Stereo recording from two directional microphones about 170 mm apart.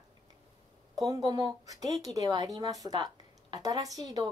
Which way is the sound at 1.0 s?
20° right (ahead or behind).